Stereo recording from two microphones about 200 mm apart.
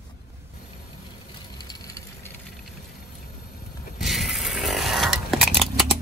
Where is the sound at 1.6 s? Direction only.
20° left (ahead or behind).